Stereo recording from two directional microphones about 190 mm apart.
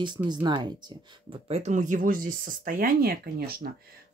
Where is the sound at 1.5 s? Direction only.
40° right (ahead or behind).